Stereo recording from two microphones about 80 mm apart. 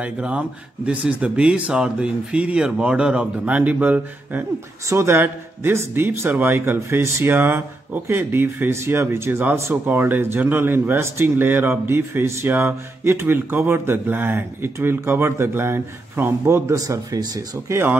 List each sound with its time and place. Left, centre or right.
0.0 s speech: centre
4.8 s speech: right
16.7 s speech: right
17.6 s speech: right